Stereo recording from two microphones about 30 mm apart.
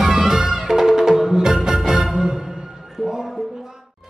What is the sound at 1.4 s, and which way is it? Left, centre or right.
Music, right.